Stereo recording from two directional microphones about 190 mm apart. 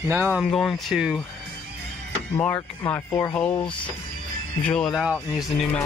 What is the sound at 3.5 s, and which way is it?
Speech, 25° left (ahead or behind).